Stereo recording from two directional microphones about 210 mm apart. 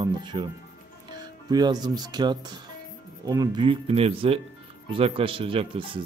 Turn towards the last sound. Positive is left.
turn(degrees=-25)  # may be behind; listen again after turning